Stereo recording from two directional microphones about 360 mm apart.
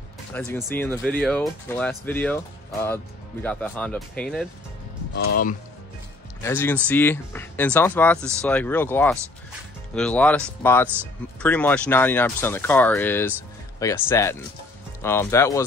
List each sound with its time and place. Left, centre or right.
0.3 s speech: centre
5.1 s speech: left
6.4 s speech: centre